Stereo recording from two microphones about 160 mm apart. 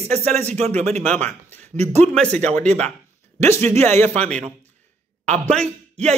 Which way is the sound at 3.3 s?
15° left (ahead or behind).